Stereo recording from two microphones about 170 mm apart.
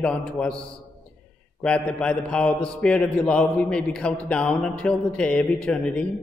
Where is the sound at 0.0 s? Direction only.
5° left (ahead or behind).